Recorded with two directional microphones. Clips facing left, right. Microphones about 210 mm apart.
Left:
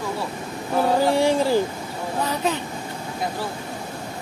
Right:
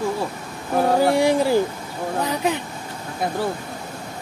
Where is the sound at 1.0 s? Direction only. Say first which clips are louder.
Right 1 dB; 15° right (ahead or behind).